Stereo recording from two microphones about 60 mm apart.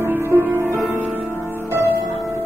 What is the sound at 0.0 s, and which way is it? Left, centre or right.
Music, right.